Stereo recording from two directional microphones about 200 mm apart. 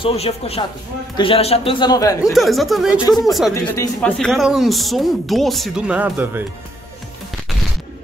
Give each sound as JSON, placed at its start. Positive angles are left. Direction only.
{"t": 0.0, "sound": "speech", "side_deg": 30}
{"t": 2.3, "sound": "speech", "side_deg": 0}
{"t": 3.7, "sound": "speech", "side_deg": 15}
{"t": 4.2, "sound": "speech", "side_deg": 0}